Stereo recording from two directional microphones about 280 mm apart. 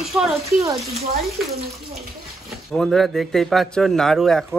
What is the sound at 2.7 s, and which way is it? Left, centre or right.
Speech, centre.